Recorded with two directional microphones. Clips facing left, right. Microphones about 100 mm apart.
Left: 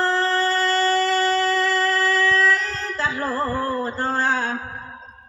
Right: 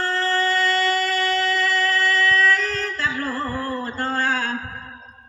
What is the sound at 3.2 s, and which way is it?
Music, 15° left (ahead or behind).